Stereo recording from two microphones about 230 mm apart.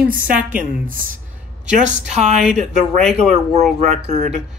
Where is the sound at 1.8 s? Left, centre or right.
Right.